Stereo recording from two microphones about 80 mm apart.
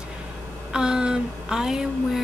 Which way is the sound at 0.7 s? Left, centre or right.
Centre.